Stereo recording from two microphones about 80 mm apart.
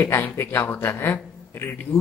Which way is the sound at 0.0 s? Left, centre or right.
Left.